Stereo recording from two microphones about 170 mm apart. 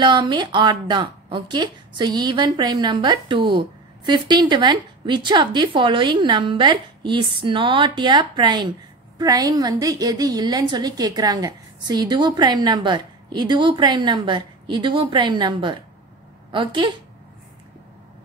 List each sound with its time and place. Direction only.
0.0 s a woman's voice: 25° right (ahead or behind)